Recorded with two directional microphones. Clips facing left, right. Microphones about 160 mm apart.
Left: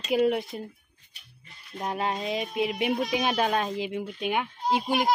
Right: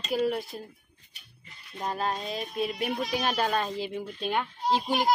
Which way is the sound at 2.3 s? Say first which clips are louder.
Left 3 dB; 85° left.